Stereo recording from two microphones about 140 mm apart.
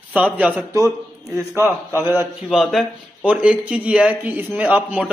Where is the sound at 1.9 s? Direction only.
15° right (ahead or behind).